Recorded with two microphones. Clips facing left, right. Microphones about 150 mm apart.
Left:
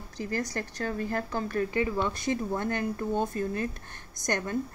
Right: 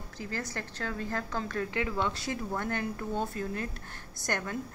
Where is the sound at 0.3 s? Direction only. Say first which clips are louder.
Left 5 dB; 15° left (ahead or behind).